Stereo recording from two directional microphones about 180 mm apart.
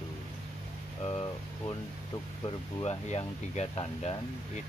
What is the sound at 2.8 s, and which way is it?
Speech, 35° left (ahead or behind).